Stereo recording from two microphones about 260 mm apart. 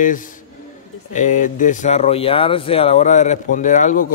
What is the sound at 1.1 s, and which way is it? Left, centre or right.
Speech, left.